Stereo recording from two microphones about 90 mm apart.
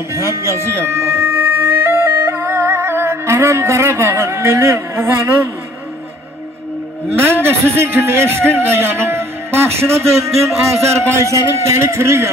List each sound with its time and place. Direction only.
0.1 s music: 30° right (ahead or behind)
7.1 s a man's voice: 25° right (ahead or behind)